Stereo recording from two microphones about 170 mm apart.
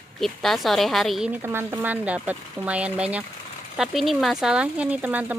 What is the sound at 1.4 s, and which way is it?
Speech, 15° right (ahead or behind).